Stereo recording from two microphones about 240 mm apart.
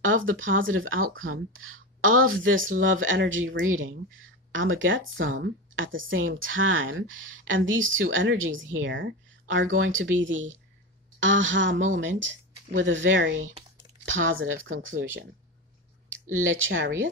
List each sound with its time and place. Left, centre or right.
0.0 s a woman's voice: right
16.3 s a woman's voice: right